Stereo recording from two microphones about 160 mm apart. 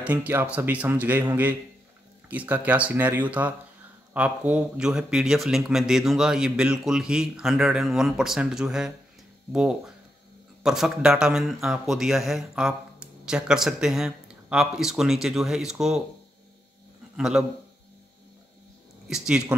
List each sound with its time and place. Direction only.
0.0 s speech: 10° right (ahead or behind)
17.2 s speech: 5° right (ahead or behind)
19.0 s speech: 5° right (ahead or behind)